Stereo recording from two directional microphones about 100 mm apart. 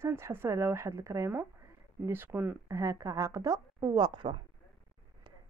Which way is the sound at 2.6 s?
30° right (ahead or behind).